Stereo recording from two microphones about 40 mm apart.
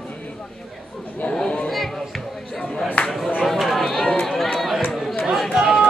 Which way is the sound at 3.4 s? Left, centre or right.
Centre.